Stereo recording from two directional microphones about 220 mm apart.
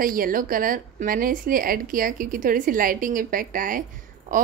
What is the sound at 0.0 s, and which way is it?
Speech, 40° right (ahead or behind).